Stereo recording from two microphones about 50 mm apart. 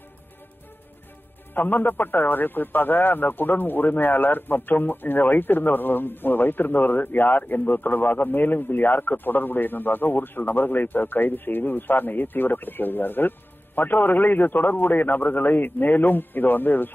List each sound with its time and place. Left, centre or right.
1.5 s a man's voice: left